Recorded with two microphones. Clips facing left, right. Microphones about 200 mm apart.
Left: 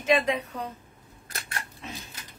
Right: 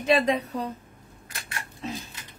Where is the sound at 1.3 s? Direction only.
40° left (ahead or behind).